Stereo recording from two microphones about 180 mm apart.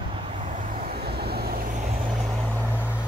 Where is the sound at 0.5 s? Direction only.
55° right (ahead or behind).